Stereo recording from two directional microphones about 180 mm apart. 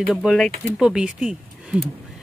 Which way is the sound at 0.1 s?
Centre (ahead or behind).